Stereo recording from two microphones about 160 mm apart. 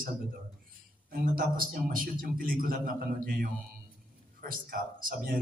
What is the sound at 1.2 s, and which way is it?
A man's voice, 60° right (ahead or behind).